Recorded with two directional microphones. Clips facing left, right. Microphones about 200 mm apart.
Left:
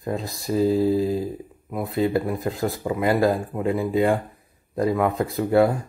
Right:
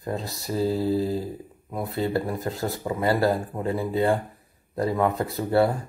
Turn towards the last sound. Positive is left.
turn(degrees=15)  # may be behind; listen again after turning